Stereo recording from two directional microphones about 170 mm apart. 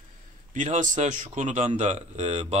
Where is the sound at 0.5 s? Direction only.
45° right (ahead or behind).